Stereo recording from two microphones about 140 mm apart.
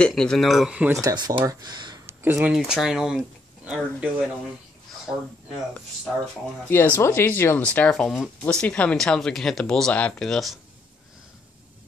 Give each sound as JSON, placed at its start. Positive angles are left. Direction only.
{"t": 0.0, "sound": "speech", "side_deg": 5}
{"t": 1.0, "sound": "speech", "side_deg": -25}
{"t": 2.0, "sound": "speech", "side_deg": -10}
{"t": 6.7, "sound": "speech", "side_deg": 15}